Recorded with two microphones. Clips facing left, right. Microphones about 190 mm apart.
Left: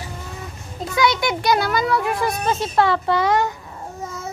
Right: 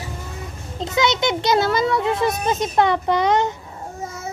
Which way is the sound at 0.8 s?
25° right (ahead or behind).